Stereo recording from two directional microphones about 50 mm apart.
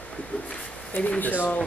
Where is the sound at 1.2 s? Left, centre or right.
Left.